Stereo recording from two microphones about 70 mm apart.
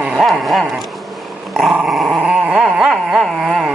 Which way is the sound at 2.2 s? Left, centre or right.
Centre.